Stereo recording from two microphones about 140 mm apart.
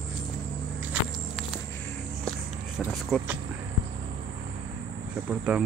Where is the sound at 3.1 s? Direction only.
5° left (ahead or behind).